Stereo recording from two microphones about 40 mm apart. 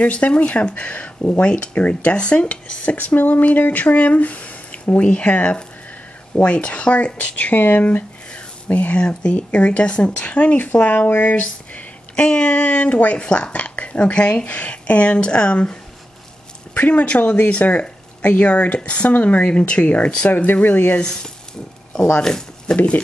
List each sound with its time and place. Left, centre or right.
0.0 s speech: left
8.9 s speech: left
11.1 s speech: left
11.3 s speech: left
13.5 s a sound: left
14.1 s speech: left
20.6 s speech: left
22.2 s speech: centre
22.8 s speech: left